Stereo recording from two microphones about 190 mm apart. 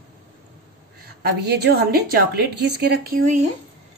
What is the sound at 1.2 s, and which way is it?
A woman's voice, 60° right (ahead or behind).